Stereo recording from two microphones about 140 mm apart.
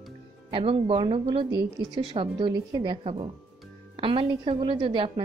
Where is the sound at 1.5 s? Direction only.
30° right (ahead or behind).